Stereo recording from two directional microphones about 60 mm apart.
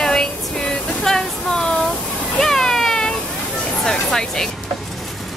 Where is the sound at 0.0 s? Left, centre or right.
Centre.